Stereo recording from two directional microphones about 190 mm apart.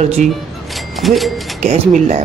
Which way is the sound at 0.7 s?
Centre (ahead or behind).